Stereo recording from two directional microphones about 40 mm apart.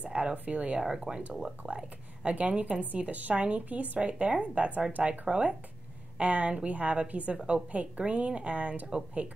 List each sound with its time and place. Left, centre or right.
0.0 s a woman's voice: right
0.8 s speech: centre
1.7 s speech: right
2.8 s a woman's voice: right
5.3 s speech: right
6.1 s a woman's voice: right